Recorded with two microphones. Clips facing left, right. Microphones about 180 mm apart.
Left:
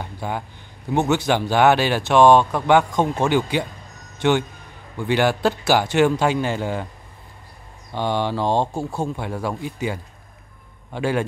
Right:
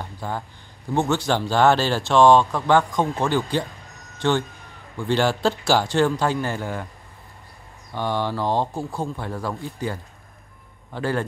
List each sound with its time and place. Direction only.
0.0 s a sound: 15° left (ahead or behind)
0.9 s speech: 20° left (ahead or behind)
7.9 s speech: 20° left (ahead or behind)
10.9 s speech: 15° left (ahead or behind)